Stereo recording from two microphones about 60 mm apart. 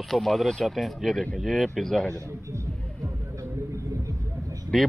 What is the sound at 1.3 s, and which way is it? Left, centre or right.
Speech, centre.